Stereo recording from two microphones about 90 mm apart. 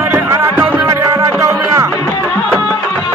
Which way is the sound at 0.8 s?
35° right (ahead or behind).